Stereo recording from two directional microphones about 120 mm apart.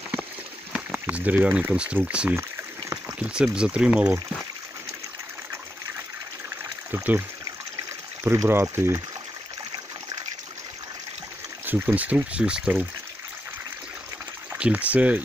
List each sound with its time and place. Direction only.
0.7 s speech: 10° right (ahead or behind)
6.9 s speech: 15° right (ahead or behind)
11.6 s speech: 15° right (ahead or behind)
14.5 s speech: 10° right (ahead or behind)